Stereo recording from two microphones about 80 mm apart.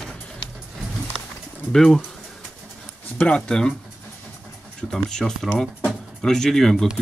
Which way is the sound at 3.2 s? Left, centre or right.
Centre.